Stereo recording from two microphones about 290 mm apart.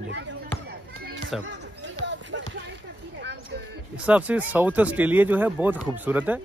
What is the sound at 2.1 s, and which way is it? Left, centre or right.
Music, right.